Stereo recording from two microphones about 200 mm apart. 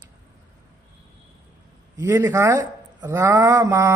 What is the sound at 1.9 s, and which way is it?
A man's voice, 10° right (ahead or behind).